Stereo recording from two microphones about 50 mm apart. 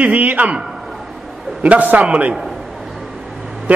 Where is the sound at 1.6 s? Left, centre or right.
Right.